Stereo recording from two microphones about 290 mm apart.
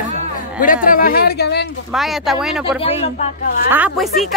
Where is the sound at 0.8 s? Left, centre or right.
Left.